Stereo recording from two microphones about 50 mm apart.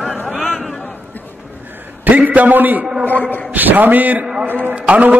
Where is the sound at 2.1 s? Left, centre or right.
Right.